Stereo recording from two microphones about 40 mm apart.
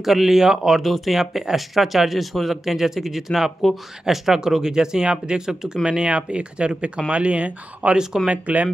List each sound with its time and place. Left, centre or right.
0.0 s speech: centre; by 8.6 s right